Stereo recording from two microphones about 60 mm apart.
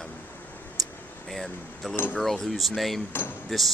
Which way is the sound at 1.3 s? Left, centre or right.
Centre.